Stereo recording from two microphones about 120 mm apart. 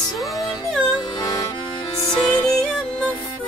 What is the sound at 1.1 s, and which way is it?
Music, 35° left (ahead or behind).